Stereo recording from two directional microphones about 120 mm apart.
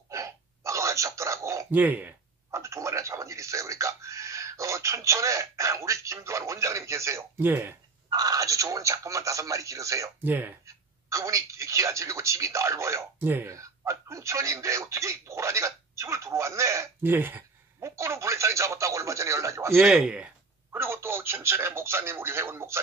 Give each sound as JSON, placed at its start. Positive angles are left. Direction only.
{"t": 0.1, "sound": "a sound", "side_deg": -25}
{"t": 1.7, "sound": "speech", "side_deg": -15}
{"t": 8.1, "sound": "speech", "side_deg": -30}
{"t": 10.2, "sound": "speech", "side_deg": -15}
{"t": 19.9, "sound": "speech", "side_deg": -5}
{"t": 20.7, "sound": "speech", "side_deg": -20}